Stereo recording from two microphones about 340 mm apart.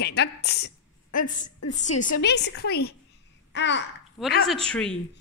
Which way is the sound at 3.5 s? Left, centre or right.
Left.